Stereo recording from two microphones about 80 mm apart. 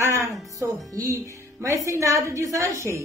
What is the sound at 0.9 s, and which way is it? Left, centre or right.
Music, right.